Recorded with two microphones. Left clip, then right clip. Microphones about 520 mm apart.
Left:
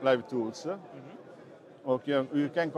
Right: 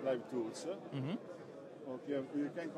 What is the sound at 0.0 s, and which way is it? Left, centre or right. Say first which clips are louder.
Speech: left 11 dB; left.